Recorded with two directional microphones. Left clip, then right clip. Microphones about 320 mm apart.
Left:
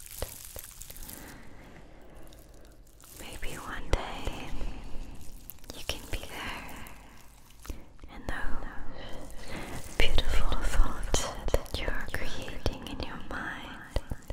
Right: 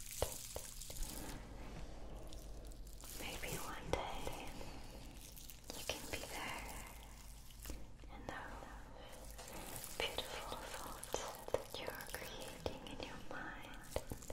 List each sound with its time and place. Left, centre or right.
0.2 s a sound: centre
3.6 s whispering: left
5.7 s whispering: left
8.1 s whispering: left